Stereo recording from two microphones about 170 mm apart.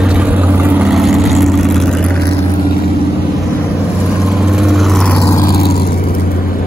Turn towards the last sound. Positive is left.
turn(degrees=65)  # may be behind; listen again after turning